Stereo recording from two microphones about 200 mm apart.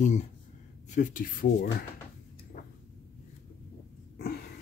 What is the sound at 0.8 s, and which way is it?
Speech, 40° left (ahead or behind).